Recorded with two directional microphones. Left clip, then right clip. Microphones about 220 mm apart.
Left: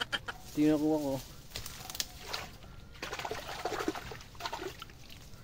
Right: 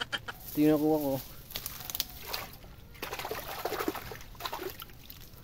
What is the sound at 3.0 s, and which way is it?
Liquid, 15° right (ahead or behind).